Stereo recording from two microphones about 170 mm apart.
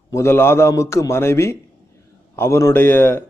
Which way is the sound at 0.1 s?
15° left (ahead or behind).